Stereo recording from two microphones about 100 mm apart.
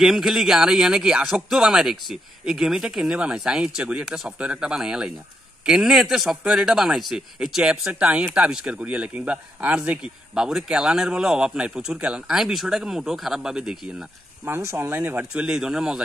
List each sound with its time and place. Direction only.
0.0 s speech: 5° right (ahead or behind)
14.4 s speech: 25° right (ahead or behind); by 16.0 s 5° right (ahead or behind)